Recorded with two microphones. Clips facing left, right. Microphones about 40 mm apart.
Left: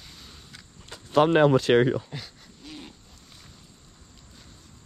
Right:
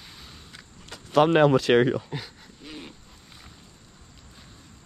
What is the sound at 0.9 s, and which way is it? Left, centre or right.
Speech, right.